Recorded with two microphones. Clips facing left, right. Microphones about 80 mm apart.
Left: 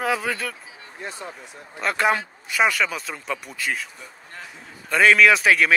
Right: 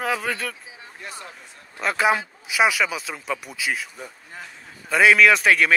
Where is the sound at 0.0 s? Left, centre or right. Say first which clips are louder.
Left 1 dB; centre.